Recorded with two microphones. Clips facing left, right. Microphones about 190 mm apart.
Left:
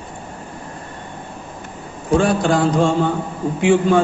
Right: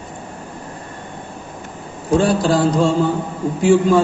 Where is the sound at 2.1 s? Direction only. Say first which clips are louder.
Right 1 dB; 35° right (ahead or behind).